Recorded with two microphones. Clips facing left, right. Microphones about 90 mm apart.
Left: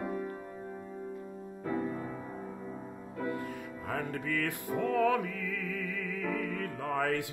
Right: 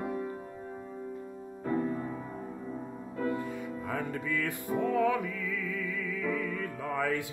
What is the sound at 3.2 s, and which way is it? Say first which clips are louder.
Music: right 3 dB; 30° right (ahead or behind).